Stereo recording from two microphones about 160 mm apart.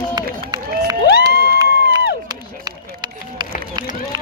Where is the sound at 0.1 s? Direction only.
25° right (ahead or behind).